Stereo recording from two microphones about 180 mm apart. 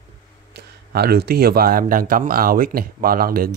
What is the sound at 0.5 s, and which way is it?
Speech, 60° right (ahead or behind).